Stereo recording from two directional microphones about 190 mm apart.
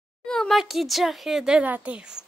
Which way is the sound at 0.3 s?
Centre (ahead or behind).